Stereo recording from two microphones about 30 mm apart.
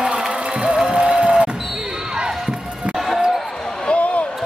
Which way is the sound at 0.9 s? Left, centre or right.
Right.